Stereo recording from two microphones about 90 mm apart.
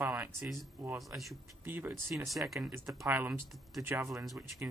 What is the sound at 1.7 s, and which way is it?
Speech, 25° right (ahead or behind).